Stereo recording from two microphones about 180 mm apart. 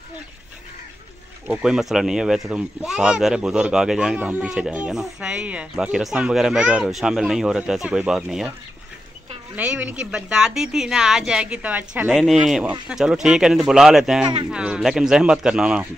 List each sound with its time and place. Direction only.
1.5 s speech: 5° right (ahead or behind)
9.6 s speech: 10° right (ahead or behind)
14.2 s speech: 25° right (ahead or behind)
14.5 s speech: 5° right (ahead or behind)